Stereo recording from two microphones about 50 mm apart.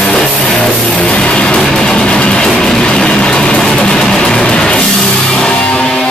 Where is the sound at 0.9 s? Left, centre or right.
Left.